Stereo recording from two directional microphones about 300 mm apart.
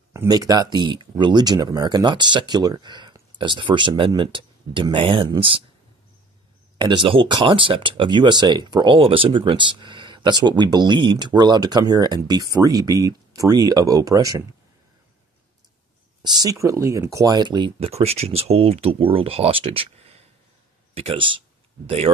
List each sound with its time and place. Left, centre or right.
0.1 s speech: centre
6.8 s speech: centre
16.2 s speech: centre